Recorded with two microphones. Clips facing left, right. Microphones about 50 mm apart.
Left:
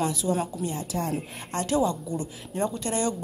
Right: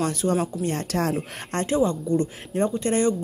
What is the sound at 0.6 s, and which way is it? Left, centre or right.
Speech, right.